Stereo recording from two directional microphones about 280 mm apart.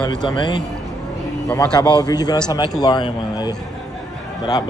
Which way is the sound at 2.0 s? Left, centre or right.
Centre.